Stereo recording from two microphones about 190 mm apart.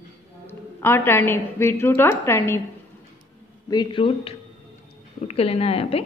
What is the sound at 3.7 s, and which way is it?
A woman's voice, 25° left (ahead or behind).